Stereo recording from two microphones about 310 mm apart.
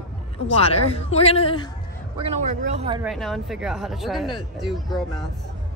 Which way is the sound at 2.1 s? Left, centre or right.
Centre.